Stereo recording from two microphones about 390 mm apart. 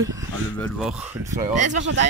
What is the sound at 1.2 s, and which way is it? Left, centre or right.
Speech, centre.